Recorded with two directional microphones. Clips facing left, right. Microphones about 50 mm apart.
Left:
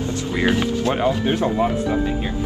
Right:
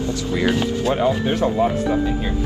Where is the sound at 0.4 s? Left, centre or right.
Left; by 1.7 s centre.